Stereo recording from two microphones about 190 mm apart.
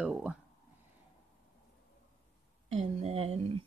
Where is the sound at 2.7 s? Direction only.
35° right (ahead or behind).